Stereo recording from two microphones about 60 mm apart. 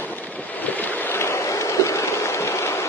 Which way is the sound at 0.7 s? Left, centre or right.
Left.